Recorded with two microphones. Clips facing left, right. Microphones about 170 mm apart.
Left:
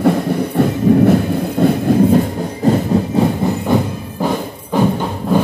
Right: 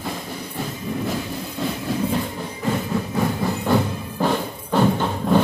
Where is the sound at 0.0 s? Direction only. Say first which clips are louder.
Left 16 dB; 65° left (ahead or behind).